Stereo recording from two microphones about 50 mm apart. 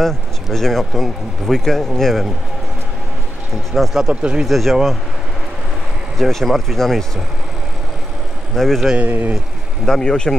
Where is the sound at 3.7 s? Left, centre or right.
Centre.